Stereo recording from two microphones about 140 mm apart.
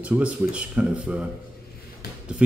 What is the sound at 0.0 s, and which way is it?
Speech, 10° right (ahead or behind).